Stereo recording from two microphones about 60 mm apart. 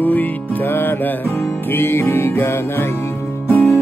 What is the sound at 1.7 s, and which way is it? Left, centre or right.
Music, left.